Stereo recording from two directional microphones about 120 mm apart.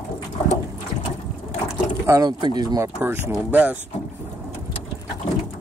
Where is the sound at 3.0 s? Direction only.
15° right (ahead or behind).